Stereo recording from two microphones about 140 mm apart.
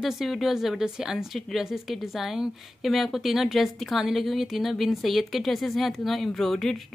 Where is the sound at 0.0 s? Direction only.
Centre (ahead or behind).